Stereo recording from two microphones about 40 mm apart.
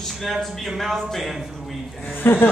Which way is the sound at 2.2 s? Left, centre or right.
Left.